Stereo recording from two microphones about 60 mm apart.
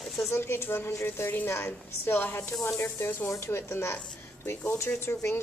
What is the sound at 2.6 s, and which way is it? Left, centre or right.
Speech, left.